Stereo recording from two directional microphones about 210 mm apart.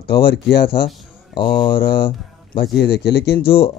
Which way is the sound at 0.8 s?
25° left (ahead or behind).